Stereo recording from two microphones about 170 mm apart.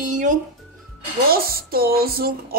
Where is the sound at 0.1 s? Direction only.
45° right (ahead or behind).